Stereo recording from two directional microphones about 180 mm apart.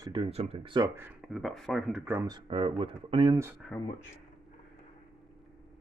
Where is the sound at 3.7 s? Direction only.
15° left (ahead or behind).